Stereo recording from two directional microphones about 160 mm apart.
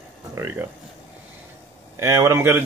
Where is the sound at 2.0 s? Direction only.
20° right (ahead or behind).